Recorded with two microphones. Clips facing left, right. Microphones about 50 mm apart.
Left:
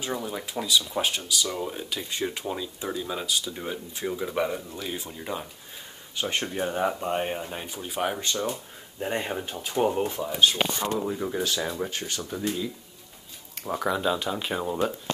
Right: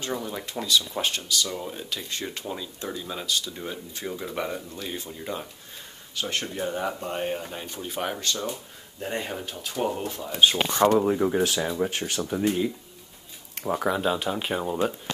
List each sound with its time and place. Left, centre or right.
0.0 s speech: centre
6.1 s speech: left; by 8.2 s centre
9.0 s speech: centre
11.0 s speech: right
11.6 s speech: centre
12.1 s speech: right
13.7 s speech: centre